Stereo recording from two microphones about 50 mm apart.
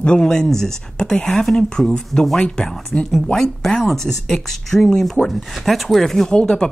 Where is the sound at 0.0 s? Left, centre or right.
Centre.